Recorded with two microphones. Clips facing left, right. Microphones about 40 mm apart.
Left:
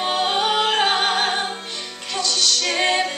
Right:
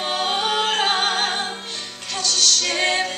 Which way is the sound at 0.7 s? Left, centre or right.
Left.